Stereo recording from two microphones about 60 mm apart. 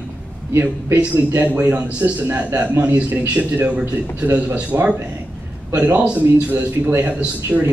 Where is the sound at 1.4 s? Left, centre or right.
Right.